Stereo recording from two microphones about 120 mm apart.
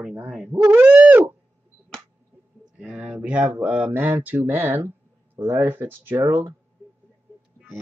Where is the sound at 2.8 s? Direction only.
5° right (ahead or behind).